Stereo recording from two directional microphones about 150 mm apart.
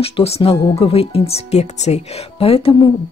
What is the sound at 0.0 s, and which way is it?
Speech, 40° left (ahead or behind).